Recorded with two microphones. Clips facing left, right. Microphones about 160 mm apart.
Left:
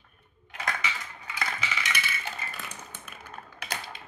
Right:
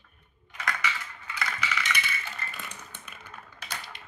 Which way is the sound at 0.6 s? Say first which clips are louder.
Right 1 dB; 25° left (ahead or behind).